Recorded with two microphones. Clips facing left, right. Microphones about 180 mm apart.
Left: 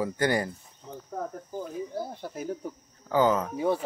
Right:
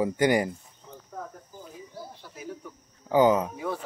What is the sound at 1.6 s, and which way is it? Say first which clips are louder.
Cricket: left 8 dB; 50° left (ahead or behind).